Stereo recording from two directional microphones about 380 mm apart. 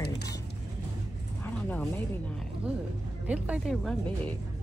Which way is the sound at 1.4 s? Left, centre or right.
Centre.